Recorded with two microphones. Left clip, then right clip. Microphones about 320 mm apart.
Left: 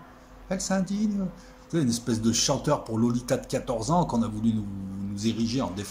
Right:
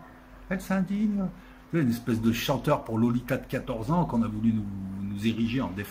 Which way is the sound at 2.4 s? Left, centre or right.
Centre.